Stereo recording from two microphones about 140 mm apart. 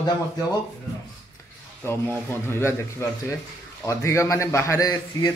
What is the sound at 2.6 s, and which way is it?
A man's voice, 15° left (ahead or behind).